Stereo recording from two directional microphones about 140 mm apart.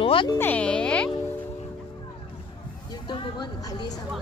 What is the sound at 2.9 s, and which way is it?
Vehicle, 30° left (ahead or behind).